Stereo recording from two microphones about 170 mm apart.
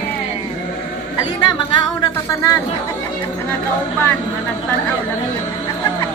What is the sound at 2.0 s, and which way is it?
Speech, 20° left (ahead or behind).